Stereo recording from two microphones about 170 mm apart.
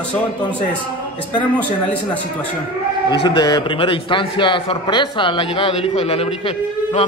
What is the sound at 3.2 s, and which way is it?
A man's voice, 25° left (ahead or behind).